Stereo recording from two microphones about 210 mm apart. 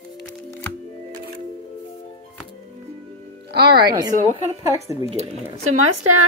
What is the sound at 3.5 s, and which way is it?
Speech, 50° right (ahead or behind).